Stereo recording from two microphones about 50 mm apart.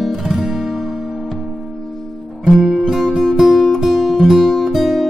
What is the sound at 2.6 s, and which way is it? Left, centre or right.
Music, right.